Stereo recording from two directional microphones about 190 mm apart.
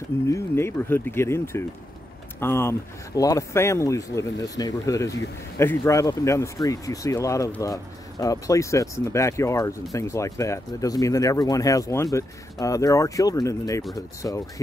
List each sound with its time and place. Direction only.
0.3 s speech: 15° left (ahead or behind)